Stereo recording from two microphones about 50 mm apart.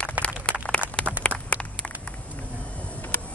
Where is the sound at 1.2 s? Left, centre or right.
Left.